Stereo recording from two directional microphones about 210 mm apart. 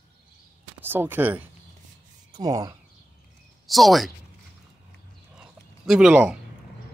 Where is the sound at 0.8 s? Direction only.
10° right (ahead or behind).